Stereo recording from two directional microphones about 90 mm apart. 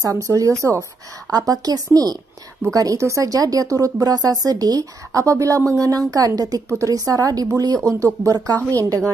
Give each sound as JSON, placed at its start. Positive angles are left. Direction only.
{"t": 0.0, "sound": "speech", "side_deg": -35}